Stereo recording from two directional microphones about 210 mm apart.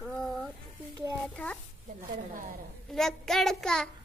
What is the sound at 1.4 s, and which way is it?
Speech, 5° left (ahead or behind).